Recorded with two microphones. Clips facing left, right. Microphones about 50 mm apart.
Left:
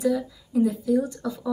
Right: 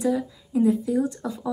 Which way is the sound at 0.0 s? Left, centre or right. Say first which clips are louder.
Even; right.